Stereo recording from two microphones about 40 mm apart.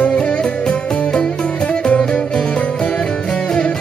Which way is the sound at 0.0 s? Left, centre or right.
Left.